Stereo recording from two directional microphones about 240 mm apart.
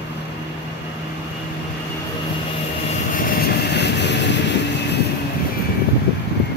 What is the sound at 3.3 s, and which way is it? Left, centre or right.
Vehicle, left.